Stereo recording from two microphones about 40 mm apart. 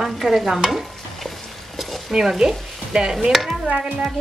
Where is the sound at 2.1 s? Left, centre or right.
Centre.